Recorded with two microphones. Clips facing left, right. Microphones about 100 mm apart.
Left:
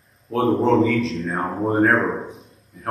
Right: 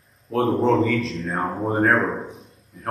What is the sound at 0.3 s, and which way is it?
A man's voice, centre (ahead or behind).